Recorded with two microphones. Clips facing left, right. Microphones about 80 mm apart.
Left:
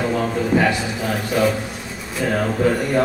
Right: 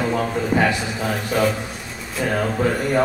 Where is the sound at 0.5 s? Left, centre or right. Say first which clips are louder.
Left 1 dB; centre.